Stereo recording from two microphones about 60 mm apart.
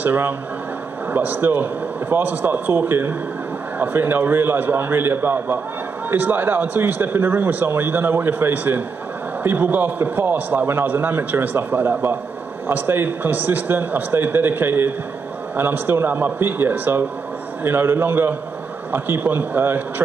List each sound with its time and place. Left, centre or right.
0.0 s a man's voice: right